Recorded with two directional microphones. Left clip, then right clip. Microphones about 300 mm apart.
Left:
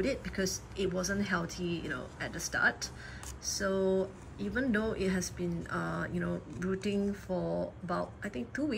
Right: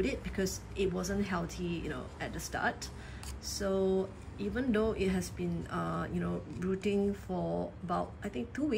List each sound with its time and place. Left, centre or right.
0.0 s speech: centre